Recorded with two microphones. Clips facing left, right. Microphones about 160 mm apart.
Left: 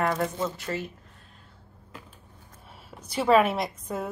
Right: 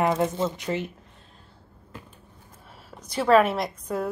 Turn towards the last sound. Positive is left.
turn(degrees=0)  # may be behind; listen again after turning